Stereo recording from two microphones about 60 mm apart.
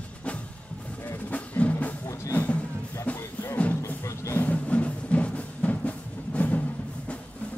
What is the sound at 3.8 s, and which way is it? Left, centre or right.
Music, left.